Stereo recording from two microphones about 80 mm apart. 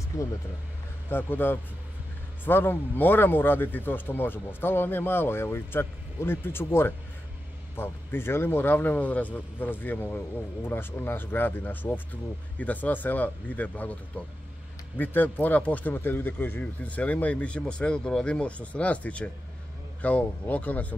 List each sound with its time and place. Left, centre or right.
0.1 s speech: left
1.1 s speech: left
15.0 s speech: left